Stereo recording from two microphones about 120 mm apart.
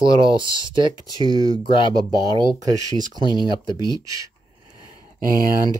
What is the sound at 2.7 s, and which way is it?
Speech, 30° right (ahead or behind).